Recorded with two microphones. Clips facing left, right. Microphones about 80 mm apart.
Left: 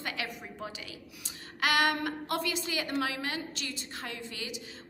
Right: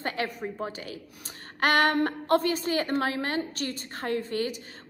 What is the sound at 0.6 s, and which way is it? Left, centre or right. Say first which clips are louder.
A woman's voice: right 6 dB; right.